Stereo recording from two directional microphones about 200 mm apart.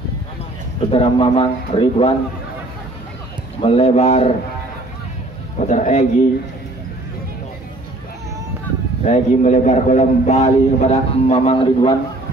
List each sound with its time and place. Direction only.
0.7 s speech: 25° left (ahead or behind)
3.6 s a man's voice: 30° left (ahead or behind)
5.6 s a man's voice: 35° left (ahead or behind)
9.0 s a man's voice: 35° left (ahead or behind)